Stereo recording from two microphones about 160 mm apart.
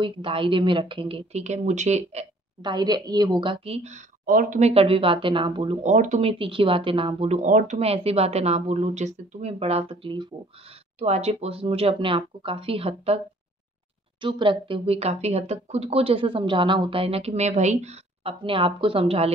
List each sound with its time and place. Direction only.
0.0 s speech: 35° right (ahead or behind)
2.6 s a woman's voice: 25° right (ahead or behind); by 4.0 s 40° right (ahead or behind)
4.3 s speech: 60° right (ahead or behind)
4.6 s speech: 40° right (ahead or behind)
5.9 s speech: 50° right (ahead or behind)
6.2 s speech: 35° right (ahead or behind)
11.0 s speech: 40° right (ahead or behind)
14.2 s speech: 30° right (ahead or behind)